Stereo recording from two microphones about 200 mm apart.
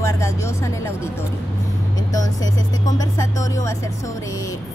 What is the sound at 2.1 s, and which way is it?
A woman's voice, 15° left (ahead or behind).